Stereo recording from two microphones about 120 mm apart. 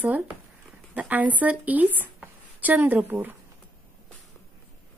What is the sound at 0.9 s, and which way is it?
A woman's voice, 15° right (ahead or behind).